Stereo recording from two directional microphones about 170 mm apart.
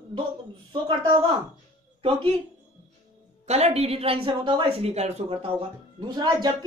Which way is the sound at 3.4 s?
40° right (ahead or behind).